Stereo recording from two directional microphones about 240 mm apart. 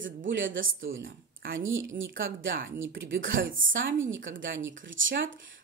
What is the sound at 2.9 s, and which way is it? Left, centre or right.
Speech, right.